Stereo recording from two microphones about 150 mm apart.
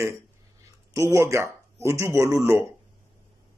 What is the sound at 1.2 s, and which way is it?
Speech, 20° right (ahead or behind).